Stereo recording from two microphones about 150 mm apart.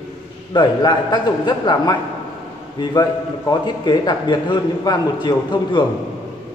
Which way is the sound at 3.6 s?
30° left (ahead or behind).